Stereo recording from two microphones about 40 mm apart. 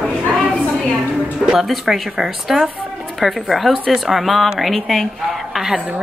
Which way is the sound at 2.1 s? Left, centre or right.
Centre.